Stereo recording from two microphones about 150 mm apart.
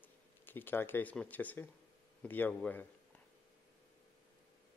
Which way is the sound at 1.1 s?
10° left (ahead or behind).